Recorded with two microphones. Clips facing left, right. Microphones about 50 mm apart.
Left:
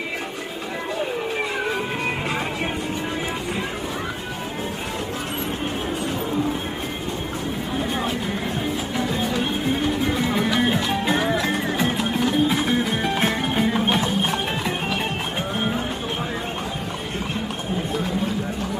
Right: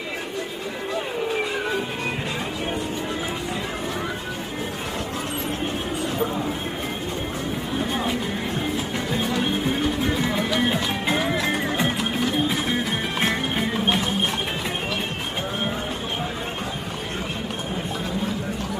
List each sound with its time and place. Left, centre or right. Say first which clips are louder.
10.3 s music: left 2 dB; centre